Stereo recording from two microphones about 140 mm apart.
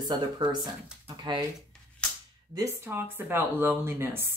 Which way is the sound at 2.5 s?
20° right (ahead or behind).